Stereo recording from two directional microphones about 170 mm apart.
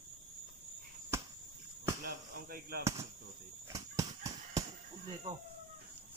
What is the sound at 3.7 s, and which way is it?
Horse, 20° right (ahead or behind).